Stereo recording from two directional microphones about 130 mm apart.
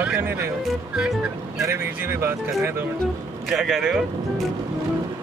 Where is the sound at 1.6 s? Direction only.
15° right (ahead or behind).